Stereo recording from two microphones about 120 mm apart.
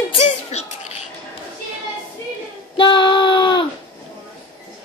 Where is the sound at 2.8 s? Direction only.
40° left (ahead or behind).